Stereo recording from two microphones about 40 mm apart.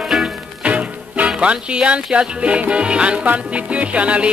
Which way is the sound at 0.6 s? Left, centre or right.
Right.